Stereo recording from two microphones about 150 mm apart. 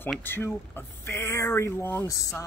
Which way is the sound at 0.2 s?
15° left (ahead or behind).